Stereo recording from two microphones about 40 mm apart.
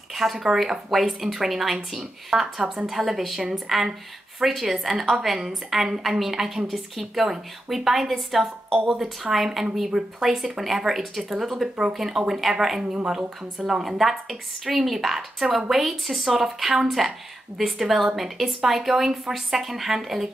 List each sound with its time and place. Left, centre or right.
0.1 s a woman's voice: centre
13.0 s speech: right
13.7 s a woman's voice: centre